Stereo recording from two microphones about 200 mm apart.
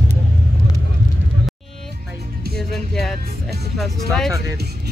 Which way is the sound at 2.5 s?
Centre (ahead or behind).